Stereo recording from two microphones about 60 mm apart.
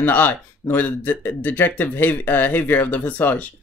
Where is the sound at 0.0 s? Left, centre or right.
Left.